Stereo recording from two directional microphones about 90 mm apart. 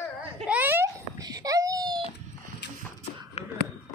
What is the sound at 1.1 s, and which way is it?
Baby cry, 40° right (ahead or behind).